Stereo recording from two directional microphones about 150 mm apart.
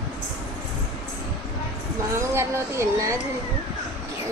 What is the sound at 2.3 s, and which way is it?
Speech, 15° right (ahead or behind).